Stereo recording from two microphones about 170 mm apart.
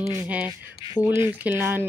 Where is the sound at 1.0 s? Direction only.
5° left (ahead or behind).